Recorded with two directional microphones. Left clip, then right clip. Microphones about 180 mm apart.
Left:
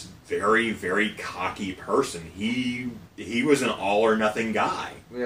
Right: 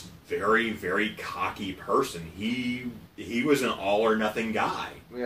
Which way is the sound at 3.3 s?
15° left (ahead or behind).